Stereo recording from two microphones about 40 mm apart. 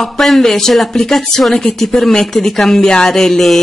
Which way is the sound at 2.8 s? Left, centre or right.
Centre.